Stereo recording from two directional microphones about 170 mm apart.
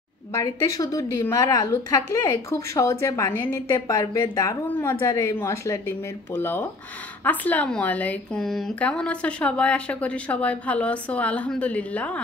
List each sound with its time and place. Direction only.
0.3 s a woman's voice: 20° left (ahead or behind)